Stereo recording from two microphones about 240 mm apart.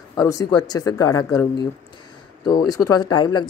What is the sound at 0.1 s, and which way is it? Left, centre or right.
Speech, centre.